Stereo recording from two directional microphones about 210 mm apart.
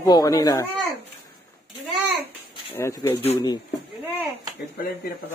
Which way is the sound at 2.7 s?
15° left (ahead or behind).